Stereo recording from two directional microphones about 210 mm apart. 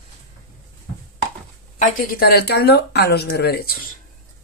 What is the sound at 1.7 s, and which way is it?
Speech, 40° left (ahead or behind).